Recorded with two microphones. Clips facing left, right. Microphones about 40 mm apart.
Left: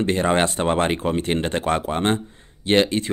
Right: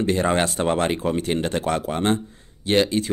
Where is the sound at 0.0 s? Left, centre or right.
Left.